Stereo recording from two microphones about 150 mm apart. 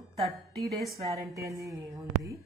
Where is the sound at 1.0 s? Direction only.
20° right (ahead or behind).